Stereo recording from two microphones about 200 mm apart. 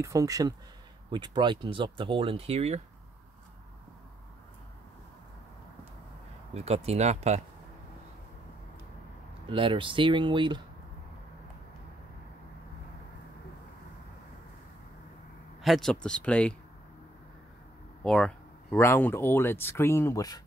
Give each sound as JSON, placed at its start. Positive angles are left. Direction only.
{"t": 0.0, "sound": "speech", "side_deg": -15}
{"t": 6.5, "sound": "speech", "side_deg": -30}
{"t": 9.5, "sound": "speech", "side_deg": -25}
{"t": 15.6, "sound": "speech", "side_deg": 0}
{"t": 18.0, "sound": "speech", "side_deg": 5}